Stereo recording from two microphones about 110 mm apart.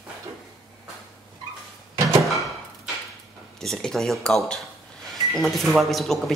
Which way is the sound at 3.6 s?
5° left (ahead or behind).